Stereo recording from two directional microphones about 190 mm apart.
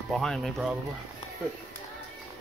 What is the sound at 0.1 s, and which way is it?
Speech, centre (ahead or behind).